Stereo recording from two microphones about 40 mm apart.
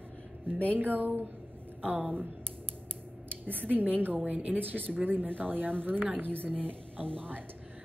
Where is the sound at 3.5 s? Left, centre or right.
Right.